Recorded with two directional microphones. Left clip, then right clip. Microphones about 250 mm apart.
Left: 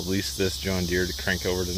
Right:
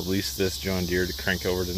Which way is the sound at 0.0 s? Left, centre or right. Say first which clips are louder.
Even; centre.